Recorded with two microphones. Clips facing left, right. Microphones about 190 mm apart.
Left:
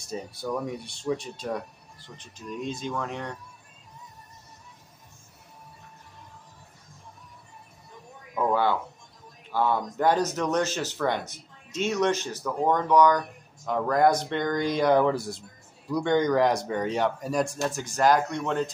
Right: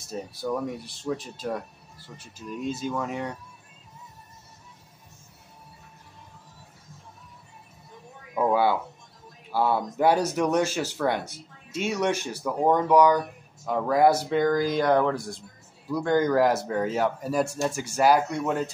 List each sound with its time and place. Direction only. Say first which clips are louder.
0.0 s speech: right 1 dB; centre (ahead or behind)
8.4 s a sound: right 2 dB; 10° right (ahead or behind)
9.5 s speech: right 1 dB; 10° right (ahead or behind)